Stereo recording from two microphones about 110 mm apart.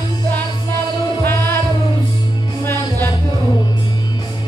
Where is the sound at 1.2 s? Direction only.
20° left (ahead or behind).